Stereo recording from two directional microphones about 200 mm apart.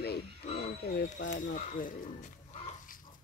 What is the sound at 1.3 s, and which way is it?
Speech, 40° left (ahead or behind).